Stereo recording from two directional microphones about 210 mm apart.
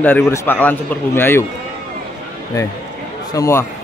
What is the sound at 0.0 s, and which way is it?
A man's voice, 10° left (ahead or behind).